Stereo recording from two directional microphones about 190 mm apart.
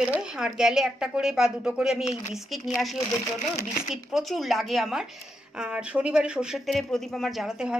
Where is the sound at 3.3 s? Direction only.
35° left (ahead or behind).